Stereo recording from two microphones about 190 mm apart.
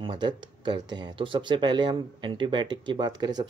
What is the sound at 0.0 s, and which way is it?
Speech, 25° right (ahead or behind).